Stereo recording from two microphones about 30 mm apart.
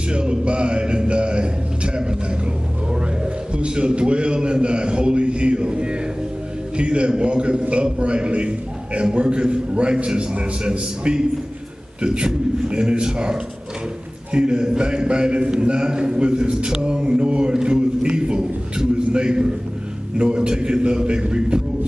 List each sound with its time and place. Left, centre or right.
0.1 s music: right
2.0 s a sound: right
6.8 s a man's voice: right